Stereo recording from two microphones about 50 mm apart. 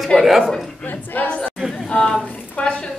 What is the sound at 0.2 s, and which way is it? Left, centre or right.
Speech, centre.